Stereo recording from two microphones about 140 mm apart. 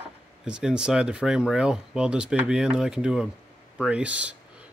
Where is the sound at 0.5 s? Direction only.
5° right (ahead or behind).